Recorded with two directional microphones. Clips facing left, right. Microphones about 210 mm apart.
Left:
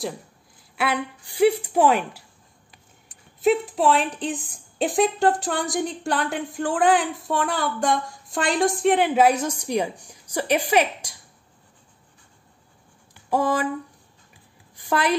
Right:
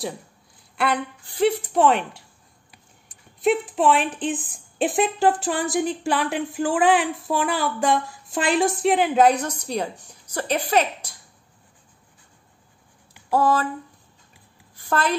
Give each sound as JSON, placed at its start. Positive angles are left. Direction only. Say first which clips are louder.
{"t": 0.7, "sound": "a woman's voice", "louder": "right 1 dB", "side_deg": 10}
{"t": 3.3, "sound": "a woman's voice", "louder": "left 1 dB", "side_deg": 0}
{"t": 13.3, "sound": "a woman's voice", "louder": "right 2 dB", "side_deg": 15}
{"t": 14.8, "sound": "a woman's voice", "louder": "left 1 dB", "side_deg": 15}